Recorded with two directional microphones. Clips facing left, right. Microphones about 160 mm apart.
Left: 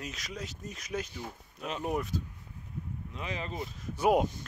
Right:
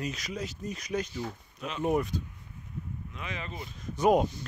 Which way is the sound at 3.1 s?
35° left (ahead or behind).